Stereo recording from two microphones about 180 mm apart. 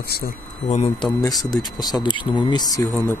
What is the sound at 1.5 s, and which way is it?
Speech, 20° left (ahead or behind).